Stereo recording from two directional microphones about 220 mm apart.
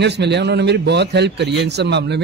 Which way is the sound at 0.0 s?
50° right (ahead or behind).